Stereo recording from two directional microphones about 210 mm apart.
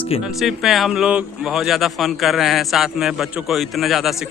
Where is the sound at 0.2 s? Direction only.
Centre (ahead or behind).